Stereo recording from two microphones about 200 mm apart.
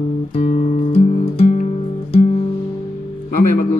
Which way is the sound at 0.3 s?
30° left (ahead or behind).